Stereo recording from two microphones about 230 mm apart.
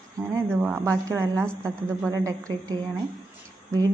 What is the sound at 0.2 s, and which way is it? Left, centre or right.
Speech, centre.